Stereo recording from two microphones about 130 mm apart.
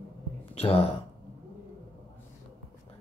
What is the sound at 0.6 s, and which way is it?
Speech, 50° left (ahead or behind).